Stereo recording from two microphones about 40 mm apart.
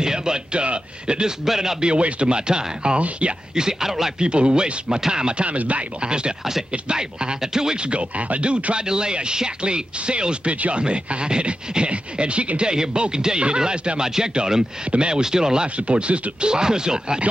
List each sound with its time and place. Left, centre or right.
0.0 s speech: centre
1.4 s speech: centre; by 3.3 s right
3.5 s speech: centre
4.2 s speech: right
5.4 s speech: right
6.0 s speech: right
7.8 s speech: right
8.7 s speech: centre